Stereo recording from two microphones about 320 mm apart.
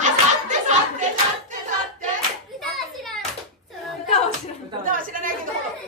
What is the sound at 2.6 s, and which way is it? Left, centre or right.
Hands, centre.